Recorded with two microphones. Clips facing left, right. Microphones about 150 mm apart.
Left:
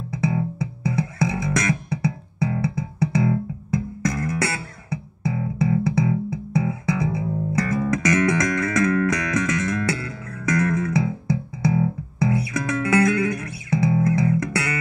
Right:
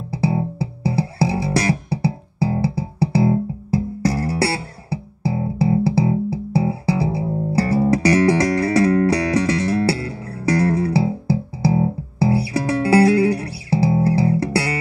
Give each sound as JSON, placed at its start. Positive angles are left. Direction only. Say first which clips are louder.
{"t": 0.1, "sound": "music", "louder": "right 3 dB", "side_deg": -30}